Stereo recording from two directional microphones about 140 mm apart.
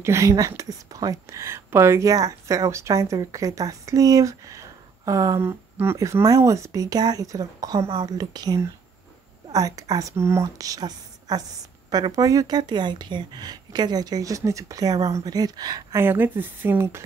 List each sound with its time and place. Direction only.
0.0 s a woman's voice: 20° right (ahead or behind)
16.0 s speech: 15° right (ahead or behind)